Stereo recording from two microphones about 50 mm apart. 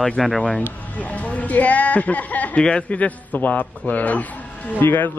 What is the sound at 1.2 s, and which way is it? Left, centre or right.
Speech, left.